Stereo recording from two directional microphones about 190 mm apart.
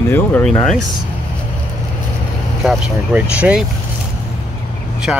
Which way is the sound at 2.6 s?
5° right (ahead or behind).